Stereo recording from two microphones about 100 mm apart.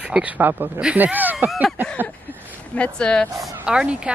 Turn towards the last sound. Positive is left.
turn(degrees=-10)  # may be behind; listen again after turning